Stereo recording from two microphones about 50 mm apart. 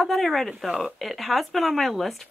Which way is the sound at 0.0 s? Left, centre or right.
Centre.